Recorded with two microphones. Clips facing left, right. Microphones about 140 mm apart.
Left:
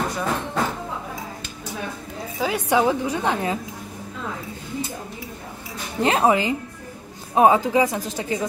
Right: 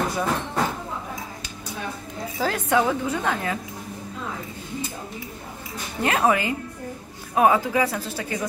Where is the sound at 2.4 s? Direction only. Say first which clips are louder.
Left 2 dB; 15° left (ahead or behind).